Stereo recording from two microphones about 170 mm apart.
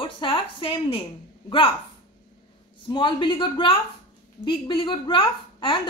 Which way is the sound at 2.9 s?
30° left (ahead or behind).